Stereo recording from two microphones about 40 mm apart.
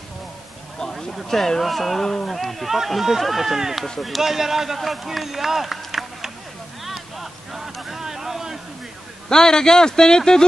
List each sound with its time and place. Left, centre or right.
0.9 s speech: centre
1.4 s speech: centre
6.8 s a sound: centre
9.3 s speech: centre